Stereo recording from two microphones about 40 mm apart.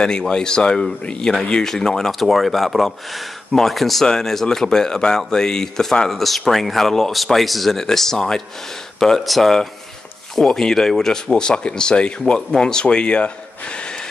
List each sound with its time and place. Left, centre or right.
0.0 s speech: centre
11.3 s speech: left